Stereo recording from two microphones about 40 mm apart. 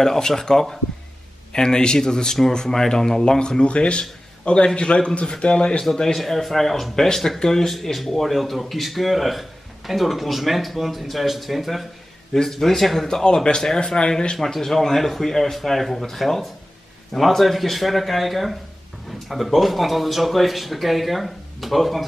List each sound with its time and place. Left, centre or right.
0.0 s speech: centre; by 5.8 s left
5.8 s speech: centre
13.2 s speech: left; by 22.0 s centre